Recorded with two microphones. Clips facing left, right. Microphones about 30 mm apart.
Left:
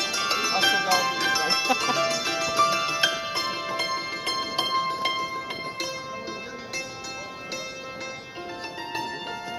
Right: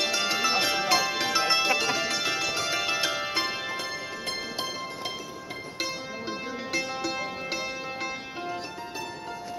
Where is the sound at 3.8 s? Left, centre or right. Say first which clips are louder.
Left 5 dB; left.